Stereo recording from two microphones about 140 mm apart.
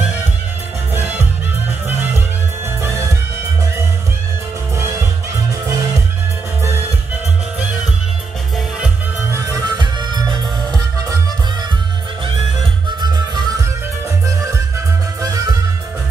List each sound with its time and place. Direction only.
8.5 s music: 5° right (ahead or behind)
9.3 s music: 25° right (ahead or behind)
13.0 s music: 30° right (ahead or behind)